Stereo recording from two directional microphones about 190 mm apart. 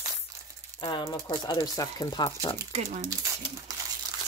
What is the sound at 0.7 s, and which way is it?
Speech, 25° left (ahead or behind).